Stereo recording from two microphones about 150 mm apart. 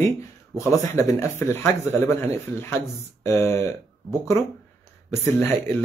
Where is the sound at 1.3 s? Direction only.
15° left (ahead or behind).